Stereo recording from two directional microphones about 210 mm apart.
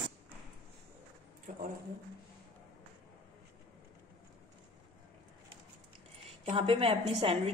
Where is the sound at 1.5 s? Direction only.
35° right (ahead or behind).